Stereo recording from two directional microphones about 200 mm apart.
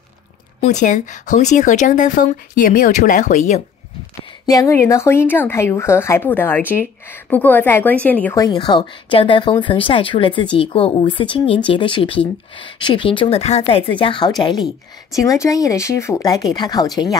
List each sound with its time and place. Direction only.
0.6 s speech: 35° left (ahead or behind)
4.5 s a woman's voice: 15° left (ahead or behind)
8.5 s a woman's voice: 25° left (ahead or behind)